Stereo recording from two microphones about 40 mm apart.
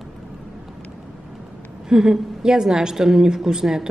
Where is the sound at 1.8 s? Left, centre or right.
Centre.